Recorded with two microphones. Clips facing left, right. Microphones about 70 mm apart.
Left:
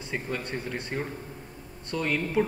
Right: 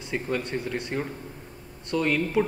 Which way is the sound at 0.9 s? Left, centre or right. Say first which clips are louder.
Right 2 dB; centre.